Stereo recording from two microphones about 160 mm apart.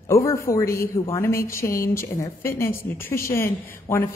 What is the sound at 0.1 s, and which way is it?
A man's voice, 20° left (ahead or behind).